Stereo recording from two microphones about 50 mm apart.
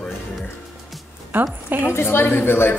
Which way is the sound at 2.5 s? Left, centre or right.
Left.